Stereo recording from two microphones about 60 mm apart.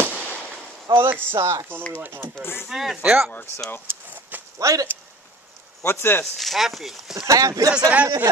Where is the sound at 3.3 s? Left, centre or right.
Left.